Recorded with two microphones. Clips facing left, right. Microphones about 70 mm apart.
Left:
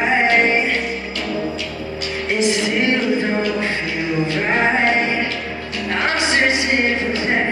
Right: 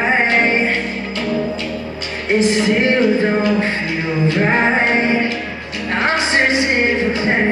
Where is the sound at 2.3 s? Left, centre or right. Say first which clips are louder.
Right 5 dB; right.